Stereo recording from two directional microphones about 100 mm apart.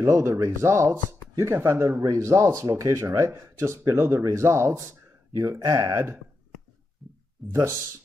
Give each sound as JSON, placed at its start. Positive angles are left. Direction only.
{"t": 0.0, "sound": "speech", "side_deg": -30}
{"t": 7.0, "sound": "a sound", "side_deg": 0}
{"t": 7.4, "sound": "speech", "side_deg": 0}